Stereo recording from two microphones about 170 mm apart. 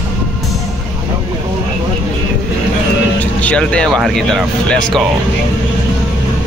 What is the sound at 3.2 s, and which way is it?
Speech, 10° left (ahead or behind).